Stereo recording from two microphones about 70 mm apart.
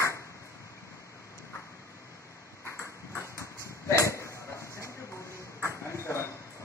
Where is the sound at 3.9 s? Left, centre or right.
Left.